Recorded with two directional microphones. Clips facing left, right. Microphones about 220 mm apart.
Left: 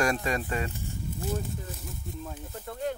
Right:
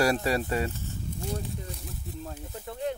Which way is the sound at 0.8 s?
15° left (ahead or behind).